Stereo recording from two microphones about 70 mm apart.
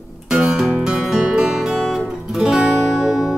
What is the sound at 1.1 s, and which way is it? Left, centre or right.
Music, centre.